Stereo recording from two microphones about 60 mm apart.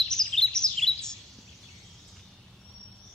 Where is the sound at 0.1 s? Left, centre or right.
Centre.